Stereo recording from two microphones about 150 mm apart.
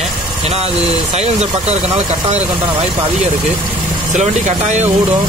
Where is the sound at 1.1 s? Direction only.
45° right (ahead or behind).